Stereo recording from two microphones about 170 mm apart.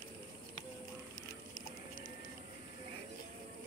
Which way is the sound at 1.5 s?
55° left (ahead or behind).